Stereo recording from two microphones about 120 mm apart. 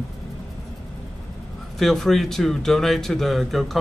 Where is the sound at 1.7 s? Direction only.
Centre (ahead or behind).